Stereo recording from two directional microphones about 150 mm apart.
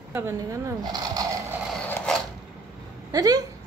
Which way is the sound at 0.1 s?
15° right (ahead or behind).